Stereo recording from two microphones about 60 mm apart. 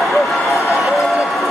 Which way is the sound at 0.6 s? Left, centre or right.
Left.